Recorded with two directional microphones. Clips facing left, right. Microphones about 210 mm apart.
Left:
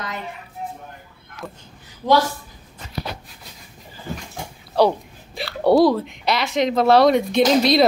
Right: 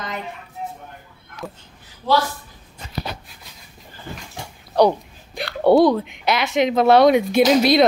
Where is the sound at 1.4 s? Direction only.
15° right (ahead or behind).